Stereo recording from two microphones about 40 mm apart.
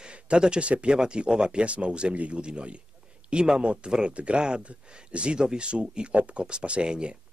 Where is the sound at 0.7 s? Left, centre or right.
Right.